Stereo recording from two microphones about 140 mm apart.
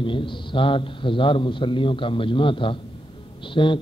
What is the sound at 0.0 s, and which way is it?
A man's voice, 35° left (ahead or behind).